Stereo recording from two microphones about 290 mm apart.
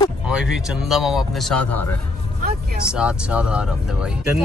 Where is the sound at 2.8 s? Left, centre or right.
Centre.